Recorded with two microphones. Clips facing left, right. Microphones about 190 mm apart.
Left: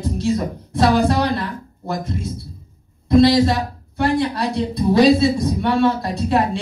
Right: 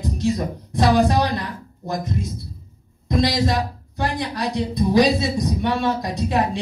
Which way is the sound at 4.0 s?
15° right (ahead or behind).